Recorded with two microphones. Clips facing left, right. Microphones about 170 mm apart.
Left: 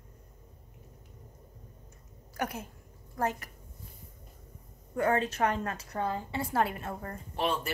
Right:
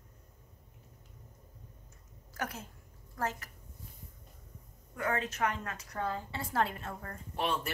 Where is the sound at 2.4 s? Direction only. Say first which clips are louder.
Left 4 dB; 15° left (ahead or behind).